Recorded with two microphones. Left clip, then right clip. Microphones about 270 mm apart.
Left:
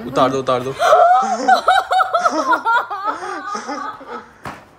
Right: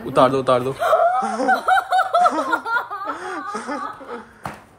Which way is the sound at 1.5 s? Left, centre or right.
Left.